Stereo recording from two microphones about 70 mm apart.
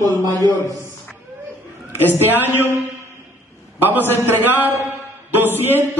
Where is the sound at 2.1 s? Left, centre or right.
Right.